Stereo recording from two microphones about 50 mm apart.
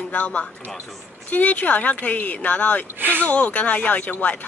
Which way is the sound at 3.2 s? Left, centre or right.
Left.